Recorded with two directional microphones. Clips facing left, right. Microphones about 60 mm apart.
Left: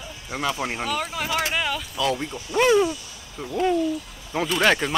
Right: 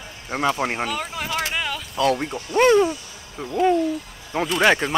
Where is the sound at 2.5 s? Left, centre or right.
Centre.